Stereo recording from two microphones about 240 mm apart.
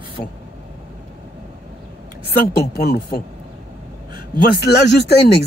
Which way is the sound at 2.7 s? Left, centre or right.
Left.